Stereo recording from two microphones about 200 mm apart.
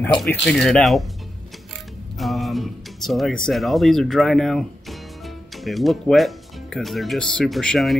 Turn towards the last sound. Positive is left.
turn(degrees=0)  # may be behind; listen again after turning